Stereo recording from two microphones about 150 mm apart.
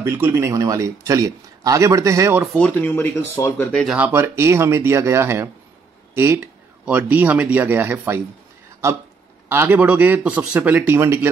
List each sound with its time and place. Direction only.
0.0 s speech: 15° right (ahead or behind)
2.4 s speech: 5° left (ahead or behind)
3.8 s a man's voice: 10° right (ahead or behind)